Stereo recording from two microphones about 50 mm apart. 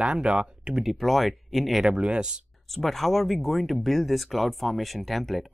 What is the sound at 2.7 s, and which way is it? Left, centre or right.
Speech, centre.